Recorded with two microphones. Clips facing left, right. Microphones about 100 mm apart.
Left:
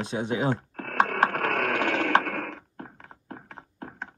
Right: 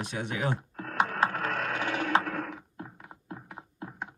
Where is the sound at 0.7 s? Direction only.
60° left (ahead or behind).